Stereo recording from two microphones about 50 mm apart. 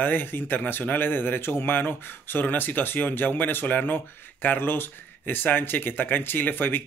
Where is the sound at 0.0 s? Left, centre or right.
Left.